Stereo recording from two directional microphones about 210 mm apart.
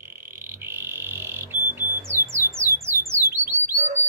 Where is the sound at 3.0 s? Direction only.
10° right (ahead or behind).